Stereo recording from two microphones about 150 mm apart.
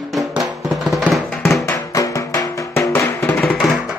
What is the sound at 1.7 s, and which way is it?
Music, 25° left (ahead or behind).